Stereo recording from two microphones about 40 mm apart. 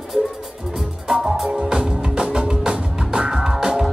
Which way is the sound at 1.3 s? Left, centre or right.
Centre.